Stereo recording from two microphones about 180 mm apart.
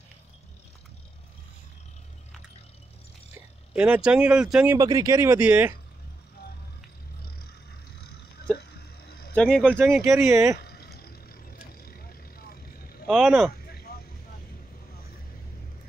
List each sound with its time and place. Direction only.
3.7 s speech: 5° right (ahead or behind)
4.7 s speech: 20° right (ahead or behind)
8.5 s a sound: 60° left (ahead or behind)
9.3 s speech: 5° left (ahead or behind)
9.7 s speech: 15° right (ahead or behind)
10.0 s speech: centre (ahead or behind)
10.3 s speech: 15° right (ahead or behind)
10.6 s vehicle: 60° left (ahead or behind)
13.0 s vehicle: 5° right (ahead or behind)
13.7 s a sound: 60° left (ahead or behind)